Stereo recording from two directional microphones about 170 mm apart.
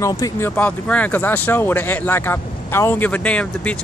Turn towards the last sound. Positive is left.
turn(degrees=10)  # may be behind; listen again after turning